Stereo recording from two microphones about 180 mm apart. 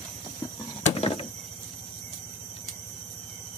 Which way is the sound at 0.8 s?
35° left (ahead or behind).